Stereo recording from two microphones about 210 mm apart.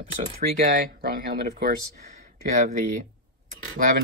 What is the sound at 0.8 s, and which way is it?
Speech, 45° right (ahead or behind).